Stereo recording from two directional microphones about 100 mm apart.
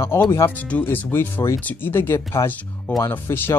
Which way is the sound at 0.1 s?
25° left (ahead or behind).